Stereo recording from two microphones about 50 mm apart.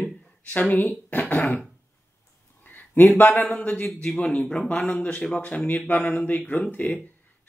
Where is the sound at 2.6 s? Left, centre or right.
Left.